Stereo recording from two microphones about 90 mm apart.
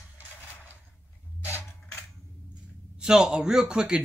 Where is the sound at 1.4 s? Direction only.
30° left (ahead or behind).